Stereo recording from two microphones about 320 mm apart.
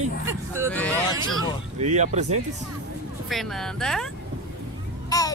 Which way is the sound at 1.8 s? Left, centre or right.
Right.